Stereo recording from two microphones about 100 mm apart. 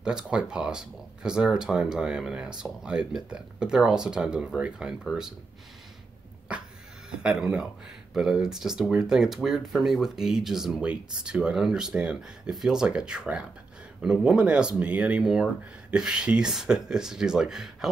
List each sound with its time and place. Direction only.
0.0 s speech: 10° right (ahead or behind)
6.5 s dog: 10° right (ahead or behind)
7.1 s speech: 10° right (ahead or behind)